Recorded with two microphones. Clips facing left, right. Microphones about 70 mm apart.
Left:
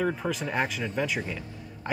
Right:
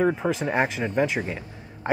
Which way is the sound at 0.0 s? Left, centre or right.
Right.